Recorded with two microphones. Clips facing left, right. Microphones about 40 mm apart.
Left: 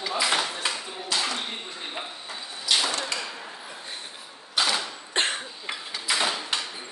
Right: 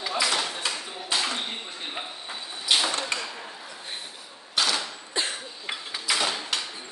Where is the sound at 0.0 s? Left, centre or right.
Centre.